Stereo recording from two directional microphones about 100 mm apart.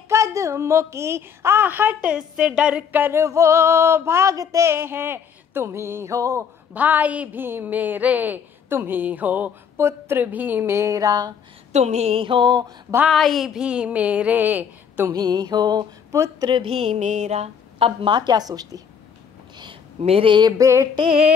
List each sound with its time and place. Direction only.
0.1 s a woman's voice: 30° right (ahead or behind)
6.7 s a woman's voice: 15° right (ahead or behind); by 11.3 s 40° right (ahead or behind)
11.7 s a woman's voice: 90° right; by 12.7 s 45° right (ahead or behind)
13.1 s a woman's voice: centre (ahead or behind); by 15.0 s 15° right (ahead or behind)
15.1 s mantra: 40° right (ahead or behind)
16.6 s a woman's voice: 85° right; by 18.8 s 40° right (ahead or behind)
20.0 s speech: 75° right (ahead or behind)
20.3 s mantra: 45° right (ahead or behind)
20.6 s a woman's voice: 30° right (ahead or behind)
20.9 s speech: 65° right (ahead or behind)